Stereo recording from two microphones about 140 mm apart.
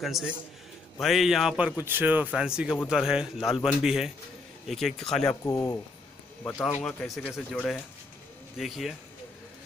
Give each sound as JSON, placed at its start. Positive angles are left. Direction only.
{"t": 0.0, "sound": "a man's voice", "side_deg": 0}
{"t": 5.3, "sound": "speech", "side_deg": 20}
{"t": 6.8, "sound": "a man's voice", "side_deg": 5}
{"t": 8.5, "sound": "a man's voice", "side_deg": 0}